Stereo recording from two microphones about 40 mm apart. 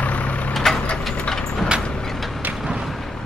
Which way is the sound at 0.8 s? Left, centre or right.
Left.